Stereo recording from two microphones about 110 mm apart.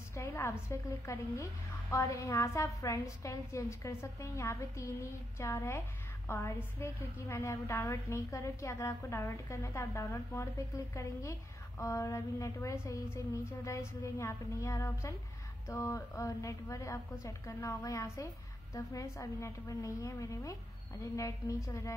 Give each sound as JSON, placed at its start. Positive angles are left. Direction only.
{"t": 0.1, "sound": "a woman's voice", "side_deg": 25}
{"t": 11.8, "sound": "a woman's voice", "side_deg": 25}